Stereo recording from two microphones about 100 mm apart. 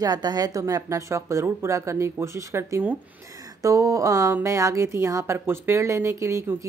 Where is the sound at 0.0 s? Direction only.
40° right (ahead or behind).